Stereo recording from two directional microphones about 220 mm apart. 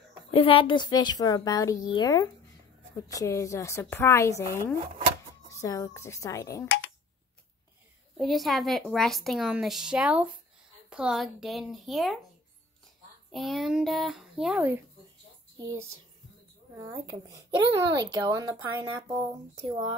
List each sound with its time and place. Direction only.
0.3 s a woman's voice: 25° left (ahead or behind)
8.2 s a woman's voice: centre (ahead or behind)
13.3 s a woman's voice: centre (ahead or behind)
16.7 s speech: 15° right (ahead or behind)
19.6 s speech: 20° right (ahead or behind)